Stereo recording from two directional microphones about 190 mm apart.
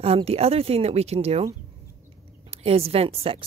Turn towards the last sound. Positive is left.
turn(degrees=-30)  # may be behind; listen again after turning